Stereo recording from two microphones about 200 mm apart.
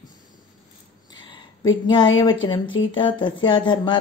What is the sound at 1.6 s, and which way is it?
A woman's voice, 20° left (ahead or behind).